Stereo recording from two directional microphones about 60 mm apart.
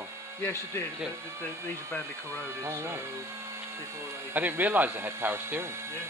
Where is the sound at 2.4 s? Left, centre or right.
Right.